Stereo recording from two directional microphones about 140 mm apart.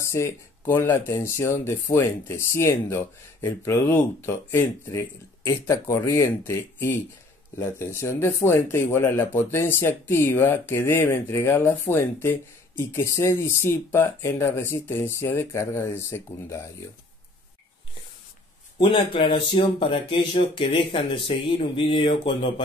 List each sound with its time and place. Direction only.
0.0 s speech: 20° left (ahead or behind)
18.8 s speech: 35° left (ahead or behind)